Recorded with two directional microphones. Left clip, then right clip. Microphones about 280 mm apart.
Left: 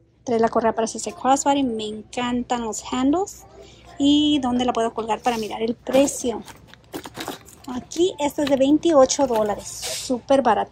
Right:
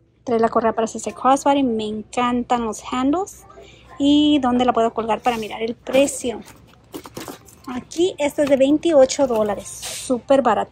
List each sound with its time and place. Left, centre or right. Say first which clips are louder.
0.2 s speech: right 2 dB; centre
6.9 s a sound: left 1 dB; centre
7.6 s speech: right 1 dB; centre